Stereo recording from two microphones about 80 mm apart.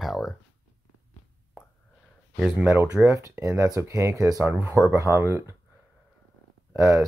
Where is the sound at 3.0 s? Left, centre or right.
Right.